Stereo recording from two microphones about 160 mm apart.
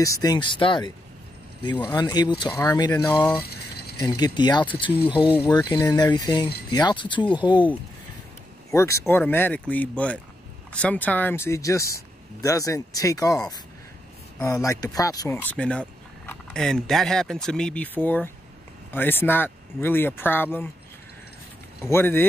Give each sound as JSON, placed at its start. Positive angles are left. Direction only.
{"t": 0.0, "sound": "speech", "side_deg": 20}
{"t": 3.4, "sound": "rattle", "side_deg": 85}
{"t": 4.0, "sound": "speech", "side_deg": 25}
{"t": 8.7, "sound": "speech", "side_deg": 20}
{"t": 14.4, "sound": "speech", "side_deg": 20}
{"t": 15.5, "sound": "speech", "side_deg": 5}
{"t": 21.8, "sound": "speech", "side_deg": 15}